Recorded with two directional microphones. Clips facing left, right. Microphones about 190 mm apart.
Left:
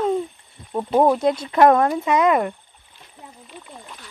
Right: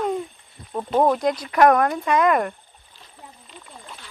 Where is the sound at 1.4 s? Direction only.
25° left (ahead or behind).